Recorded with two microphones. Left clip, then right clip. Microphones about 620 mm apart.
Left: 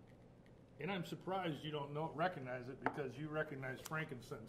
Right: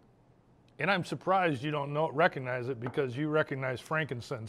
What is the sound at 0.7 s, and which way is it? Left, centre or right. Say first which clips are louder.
A man's voice: right 15 dB; right.